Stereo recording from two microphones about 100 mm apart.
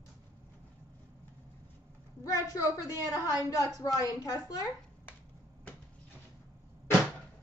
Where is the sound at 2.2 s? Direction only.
35° left (ahead or behind).